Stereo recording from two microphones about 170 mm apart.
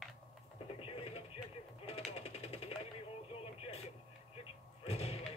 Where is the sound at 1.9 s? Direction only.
35° left (ahead or behind).